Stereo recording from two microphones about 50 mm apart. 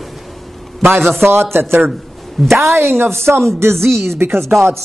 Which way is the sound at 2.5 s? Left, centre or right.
Right.